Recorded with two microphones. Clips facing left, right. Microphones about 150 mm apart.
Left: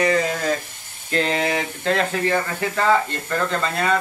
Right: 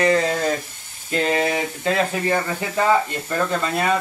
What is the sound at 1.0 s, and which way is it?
Speech, 10° right (ahead or behind).